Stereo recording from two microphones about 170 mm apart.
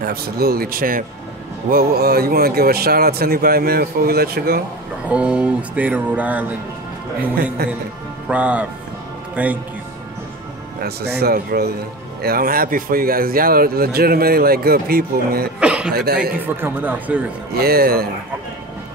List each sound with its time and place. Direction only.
0.0 s speech: 65° right (ahead or behind)
5.0 s speech: 5° right (ahead or behind)
8.3 s speech: 10° right (ahead or behind)
10.8 s speech: 70° right (ahead or behind)
15.6 s chuckle: 5° right (ahead or behind)
15.9 s speech: 65° right (ahead or behind)
16.3 s speech: 10° right (ahead or behind)
17.6 s speech: 65° right (ahead or behind)